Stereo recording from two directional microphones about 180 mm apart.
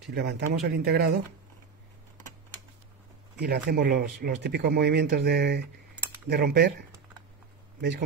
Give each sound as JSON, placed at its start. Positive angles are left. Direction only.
{"t": 0.1, "sound": "speech", "side_deg": -70}
{"t": 3.3, "sound": "speech", "side_deg": -60}